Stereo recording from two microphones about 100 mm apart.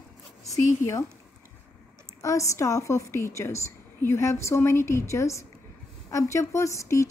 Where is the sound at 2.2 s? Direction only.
30° left (ahead or behind).